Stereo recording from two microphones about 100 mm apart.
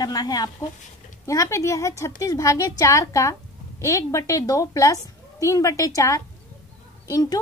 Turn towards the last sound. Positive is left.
turn(degrees=35)  # may be behind; listen again after turning